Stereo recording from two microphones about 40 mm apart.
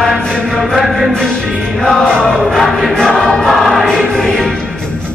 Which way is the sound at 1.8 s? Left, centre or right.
Centre.